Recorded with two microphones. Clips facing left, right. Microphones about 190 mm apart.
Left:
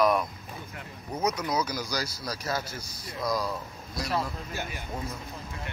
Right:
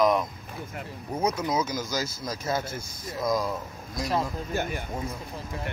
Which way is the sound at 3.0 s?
20° right (ahead or behind).